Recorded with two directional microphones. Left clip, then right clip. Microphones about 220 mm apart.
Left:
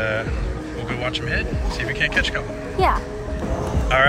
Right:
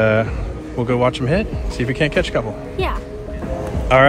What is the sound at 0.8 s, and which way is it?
Speech, 25° right (ahead or behind).